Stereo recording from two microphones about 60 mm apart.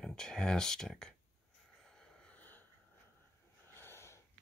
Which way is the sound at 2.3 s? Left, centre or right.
Left.